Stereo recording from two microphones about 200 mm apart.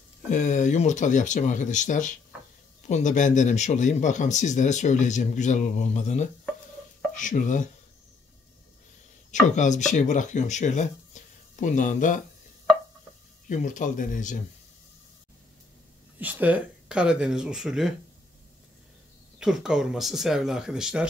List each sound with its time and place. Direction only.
0.3 s speech: 40° left (ahead or behind)
9.3 s speech: 35° left (ahead or behind)
13.5 s speech: 40° left (ahead or behind)
16.2 s speech: 10° right (ahead or behind)
19.3 s speech: 5° right (ahead or behind)